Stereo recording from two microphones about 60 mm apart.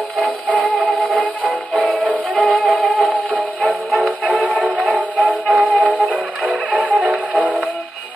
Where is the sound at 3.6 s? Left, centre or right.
Left.